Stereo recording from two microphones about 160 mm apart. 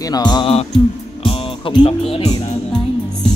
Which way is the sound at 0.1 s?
25° left (ahead or behind).